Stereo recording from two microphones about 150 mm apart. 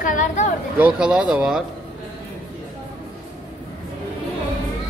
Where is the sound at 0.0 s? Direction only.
60° left (ahead or behind).